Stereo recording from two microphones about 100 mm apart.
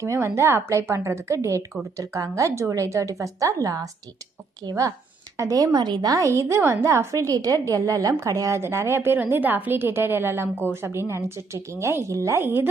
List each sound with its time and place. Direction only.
0.0 s a woman's voice: 30° right (ahead or behind)
5.4 s a woman's voice: 35° right (ahead or behind)